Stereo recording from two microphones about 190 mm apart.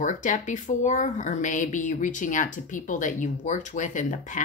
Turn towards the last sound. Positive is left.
turn(degrees=40)  # may be behind; listen again after turning